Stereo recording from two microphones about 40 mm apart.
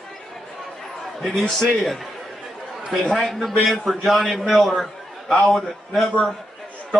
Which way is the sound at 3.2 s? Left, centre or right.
Centre.